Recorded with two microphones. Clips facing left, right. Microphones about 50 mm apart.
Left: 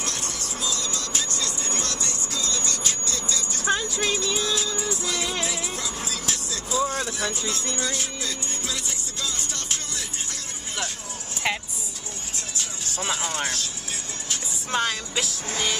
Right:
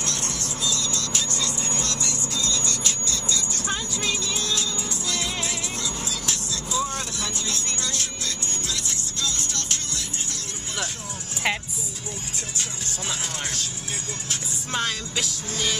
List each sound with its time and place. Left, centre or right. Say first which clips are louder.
0.2 s vehicle: right 1 dB; right
0.7 s music: right 2 dB; left
3.9 s a sound: left 2 dB; left
4.4 s music: left 2 dB; centre
6.2 s vehicle: even; left
7.8 s music: left 2 dB; centre
11.4 s vehicle: right 1 dB; centre
13.0 s speech: left 4 dB; centre
14.7 s music: left 2 dB; centre